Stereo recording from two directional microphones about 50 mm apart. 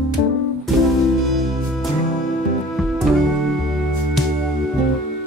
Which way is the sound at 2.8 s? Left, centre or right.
Centre.